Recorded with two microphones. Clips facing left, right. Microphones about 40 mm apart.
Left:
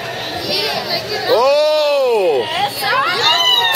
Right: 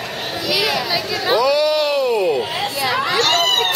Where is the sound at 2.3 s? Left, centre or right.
Centre.